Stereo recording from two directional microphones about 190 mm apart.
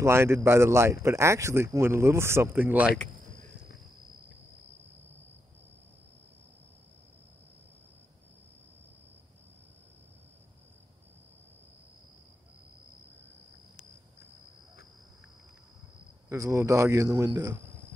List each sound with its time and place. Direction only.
0.0 s speech: 15° right (ahead or behind)
16.3 s speech: 15° right (ahead or behind)